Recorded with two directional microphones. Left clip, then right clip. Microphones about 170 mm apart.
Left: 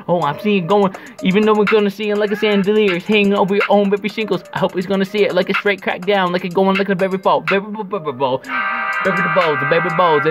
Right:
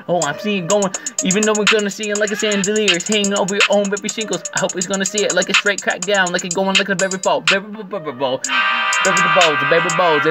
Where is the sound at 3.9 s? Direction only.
25° left (ahead or behind).